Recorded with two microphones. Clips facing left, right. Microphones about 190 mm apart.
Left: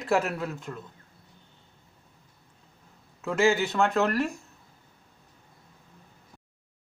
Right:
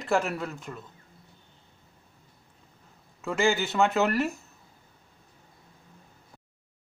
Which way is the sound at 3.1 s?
Centre (ahead or behind).